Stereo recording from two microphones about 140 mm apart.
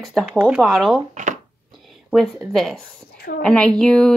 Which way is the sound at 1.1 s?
65° right (ahead or behind).